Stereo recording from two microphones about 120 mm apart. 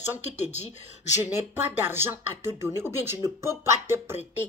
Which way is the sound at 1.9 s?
20° right (ahead or behind).